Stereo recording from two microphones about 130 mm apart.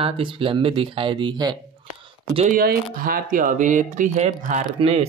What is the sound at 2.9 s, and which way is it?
Speech, 90° right.